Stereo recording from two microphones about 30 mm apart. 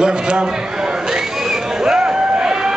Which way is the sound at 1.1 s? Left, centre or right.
Right.